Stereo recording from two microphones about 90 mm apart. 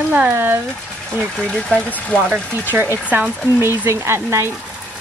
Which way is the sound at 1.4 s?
10° left (ahead or behind).